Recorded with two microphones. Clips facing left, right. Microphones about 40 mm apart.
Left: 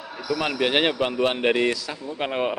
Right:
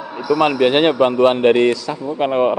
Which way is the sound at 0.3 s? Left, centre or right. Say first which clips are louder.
Right 10 dB; right.